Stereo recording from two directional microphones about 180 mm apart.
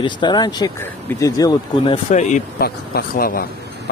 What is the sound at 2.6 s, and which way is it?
Speech, 60° left (ahead or behind).